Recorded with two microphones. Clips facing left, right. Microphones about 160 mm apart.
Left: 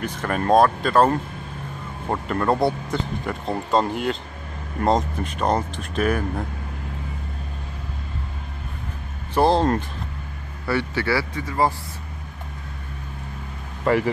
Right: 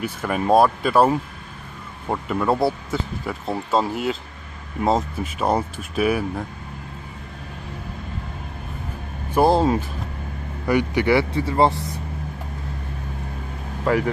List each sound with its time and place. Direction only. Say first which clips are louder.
0.0 s speech: right 1 dB; 5° right (ahead or behind)
9.3 s speech: right 1 dB; 10° right (ahead or behind); by 11.8 s 25° right (ahead or behind)
13.8 s speech: left 1 dB; centre (ahead or behind)